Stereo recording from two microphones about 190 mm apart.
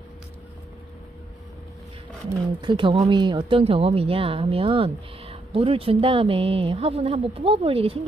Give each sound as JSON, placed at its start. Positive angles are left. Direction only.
{"t": 2.6, "sound": "speech", "side_deg": -25}